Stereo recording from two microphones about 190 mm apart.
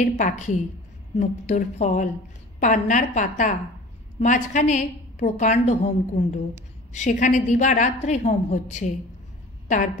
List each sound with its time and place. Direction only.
0.0 s a woman's voice: 40° left (ahead or behind)